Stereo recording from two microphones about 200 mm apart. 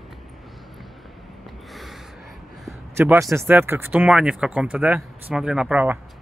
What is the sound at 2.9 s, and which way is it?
Speech, 10° right (ahead or behind).